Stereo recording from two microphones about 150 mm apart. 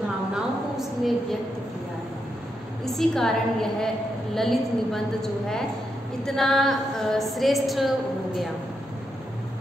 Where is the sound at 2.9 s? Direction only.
5° left (ahead or behind).